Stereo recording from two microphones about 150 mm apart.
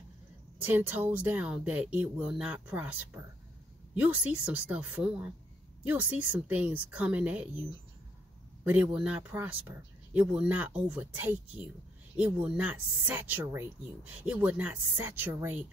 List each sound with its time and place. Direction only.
0.7 s speech: 15° right (ahead or behind)
8.6 s speech: 5° right (ahead or behind)